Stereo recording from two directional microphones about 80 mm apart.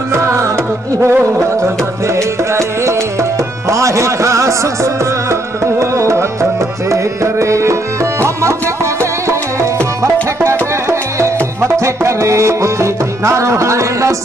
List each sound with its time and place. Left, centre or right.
0.1 s music: right
1.0 s a sound: right
2.1 s music: right
10.4 s music: right